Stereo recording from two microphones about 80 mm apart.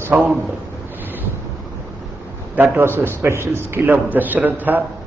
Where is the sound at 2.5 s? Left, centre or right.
Right.